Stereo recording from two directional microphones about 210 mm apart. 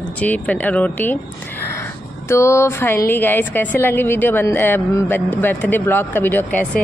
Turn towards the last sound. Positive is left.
turn(degrees=5)  # may be behind; listen again after turning